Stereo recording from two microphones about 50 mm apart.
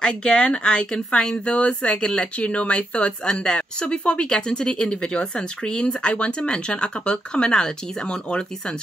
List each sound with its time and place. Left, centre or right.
0.0 s speech: centre
0.9 s speech: centre
1.3 s speech: left